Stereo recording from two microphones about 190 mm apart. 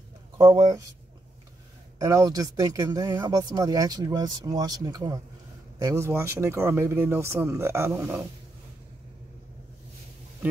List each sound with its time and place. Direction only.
0.4 s speech: 20° right (ahead or behind)
2.0 s speech: 20° right (ahead or behind)